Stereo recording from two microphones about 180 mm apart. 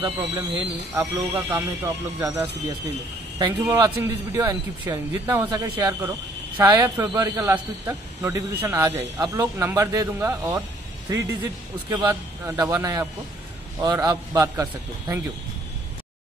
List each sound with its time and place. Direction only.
0.0 s speech: 20° right (ahead or behind)
11.9 s speech: 15° right (ahead or behind)